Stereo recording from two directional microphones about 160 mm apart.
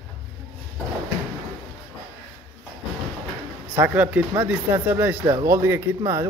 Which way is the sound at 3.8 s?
10° right (ahead or behind).